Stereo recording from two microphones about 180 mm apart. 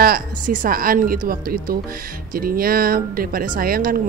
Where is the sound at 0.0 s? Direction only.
50° right (ahead or behind).